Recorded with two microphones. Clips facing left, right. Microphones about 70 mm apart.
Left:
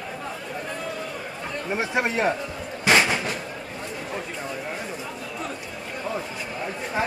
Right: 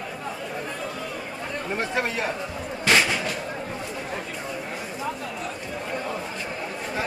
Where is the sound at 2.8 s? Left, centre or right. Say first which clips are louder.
Left 2 dB; centre.